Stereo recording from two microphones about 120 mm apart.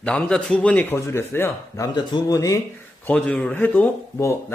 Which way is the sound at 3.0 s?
10° left (ahead or behind).